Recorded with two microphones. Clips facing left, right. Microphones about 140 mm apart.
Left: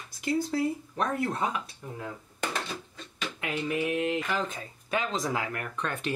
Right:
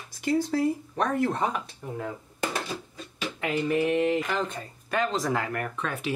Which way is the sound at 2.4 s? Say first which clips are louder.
Right 2 dB; 10° right (ahead or behind).